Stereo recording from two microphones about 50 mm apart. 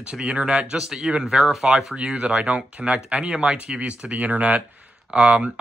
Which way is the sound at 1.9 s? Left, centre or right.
Right.